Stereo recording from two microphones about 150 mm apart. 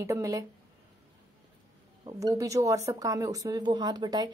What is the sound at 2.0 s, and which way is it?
Speech, 20° right (ahead or behind).